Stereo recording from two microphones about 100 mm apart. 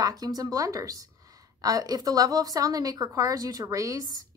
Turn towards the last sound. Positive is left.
turn(degrees=-35)  # may be behind; listen again after turning